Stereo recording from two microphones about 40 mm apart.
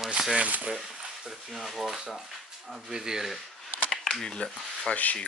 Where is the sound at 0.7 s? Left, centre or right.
Centre.